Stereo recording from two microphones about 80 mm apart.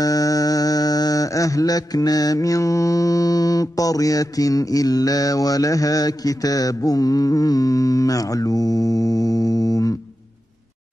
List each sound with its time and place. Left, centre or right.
0.0 s mantra: left